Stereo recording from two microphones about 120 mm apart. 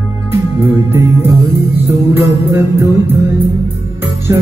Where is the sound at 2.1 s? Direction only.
20° right (ahead or behind).